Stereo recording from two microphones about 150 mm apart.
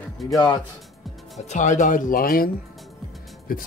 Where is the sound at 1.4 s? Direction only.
50° left (ahead or behind); by 2.5 s 75° left (ahead or behind).